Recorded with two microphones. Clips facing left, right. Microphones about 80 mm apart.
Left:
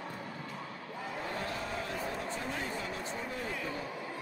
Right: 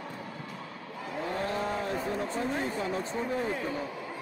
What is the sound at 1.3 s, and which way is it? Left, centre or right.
Vehicle, right.